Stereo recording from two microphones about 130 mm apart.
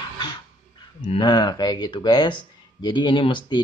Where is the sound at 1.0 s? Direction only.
40° left (ahead or behind).